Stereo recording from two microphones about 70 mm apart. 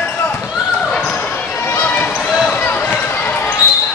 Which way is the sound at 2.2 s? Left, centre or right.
Centre.